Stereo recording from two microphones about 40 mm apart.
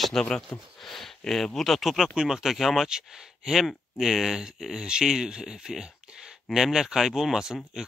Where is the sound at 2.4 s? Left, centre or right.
Centre.